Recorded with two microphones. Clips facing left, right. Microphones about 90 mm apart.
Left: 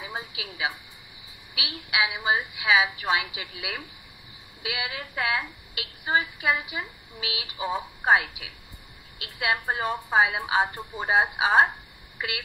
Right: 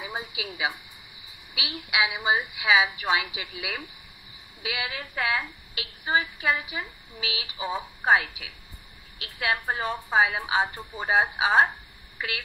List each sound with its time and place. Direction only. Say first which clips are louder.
0.0 s a woman's voice: right 2 dB; 5° right (ahead or behind)